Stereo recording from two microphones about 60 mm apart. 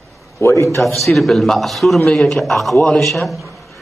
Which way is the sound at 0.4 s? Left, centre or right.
Left.